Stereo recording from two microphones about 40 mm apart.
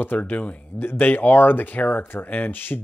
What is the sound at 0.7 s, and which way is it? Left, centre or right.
Speech, left.